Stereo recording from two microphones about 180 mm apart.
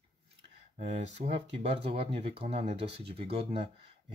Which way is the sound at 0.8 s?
40° right (ahead or behind).